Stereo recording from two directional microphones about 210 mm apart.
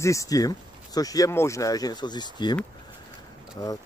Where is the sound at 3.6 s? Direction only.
20° left (ahead or behind).